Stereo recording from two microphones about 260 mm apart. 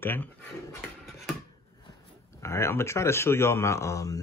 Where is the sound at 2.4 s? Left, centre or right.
Centre.